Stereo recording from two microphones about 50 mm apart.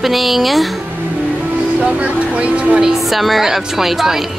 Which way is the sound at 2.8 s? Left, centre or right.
Centre.